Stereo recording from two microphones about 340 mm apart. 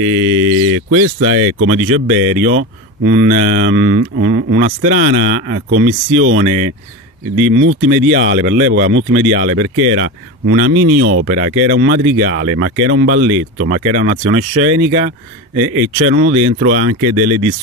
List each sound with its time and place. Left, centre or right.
0.0 s speech: right
5.7 s speech: right